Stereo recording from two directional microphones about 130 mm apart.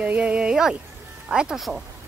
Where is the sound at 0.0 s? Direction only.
10° right (ahead or behind).